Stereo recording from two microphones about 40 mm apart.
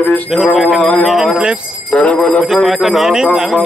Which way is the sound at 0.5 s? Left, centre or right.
Centre.